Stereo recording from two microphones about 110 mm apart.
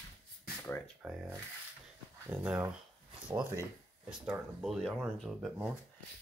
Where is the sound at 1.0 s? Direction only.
Centre (ahead or behind).